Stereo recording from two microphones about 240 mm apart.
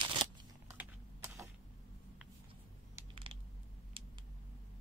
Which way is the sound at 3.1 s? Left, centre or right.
Right.